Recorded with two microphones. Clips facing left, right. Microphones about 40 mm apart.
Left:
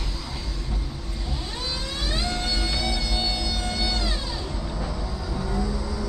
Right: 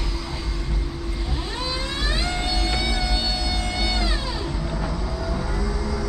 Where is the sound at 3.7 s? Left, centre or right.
Centre.